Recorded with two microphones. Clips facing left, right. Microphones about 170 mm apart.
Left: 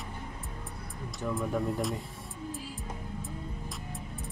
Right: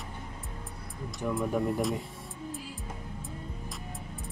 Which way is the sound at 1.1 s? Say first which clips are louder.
Right 2 dB; centre (ahead or behind).